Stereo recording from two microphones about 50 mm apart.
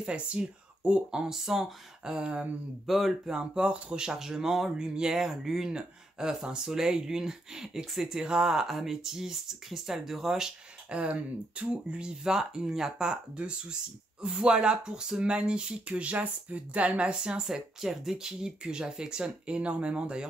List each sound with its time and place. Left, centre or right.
0.0 s speech: right
2.1 s speech: centre
2.9 s speech: centre
3.3 s speech: centre
11.0 s speech: right